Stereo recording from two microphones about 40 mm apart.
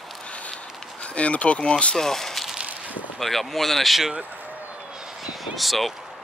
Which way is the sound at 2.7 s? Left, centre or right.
Right.